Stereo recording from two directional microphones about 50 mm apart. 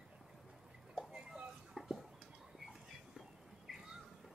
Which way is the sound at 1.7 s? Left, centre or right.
Centre.